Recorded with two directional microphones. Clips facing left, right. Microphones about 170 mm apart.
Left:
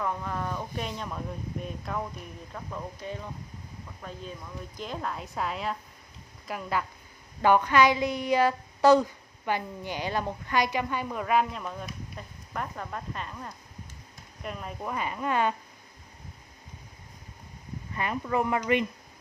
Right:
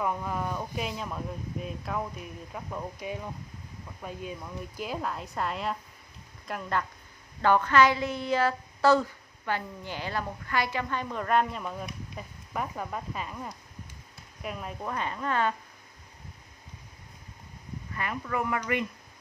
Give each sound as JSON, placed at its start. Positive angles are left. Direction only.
{"t": 0.0, "sound": "a woman's voice", "side_deg": -10}
{"t": 7.4, "sound": "a woman's voice", "side_deg": 15}
{"t": 17.9, "sound": "speech", "side_deg": 25}